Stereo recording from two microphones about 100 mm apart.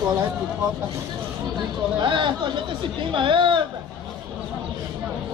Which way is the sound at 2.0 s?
50° right (ahead or behind).